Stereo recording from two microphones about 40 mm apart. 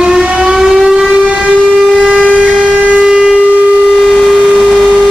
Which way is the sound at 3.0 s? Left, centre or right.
Right.